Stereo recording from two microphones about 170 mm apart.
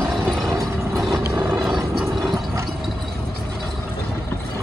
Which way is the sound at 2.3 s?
20° right (ahead or behind).